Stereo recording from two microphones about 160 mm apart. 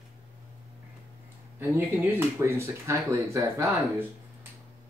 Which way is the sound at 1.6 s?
15° right (ahead or behind).